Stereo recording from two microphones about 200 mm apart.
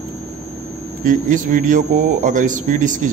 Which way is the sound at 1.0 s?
40° right (ahead or behind).